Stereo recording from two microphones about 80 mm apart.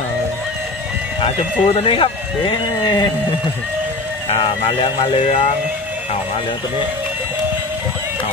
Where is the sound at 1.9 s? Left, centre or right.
Left.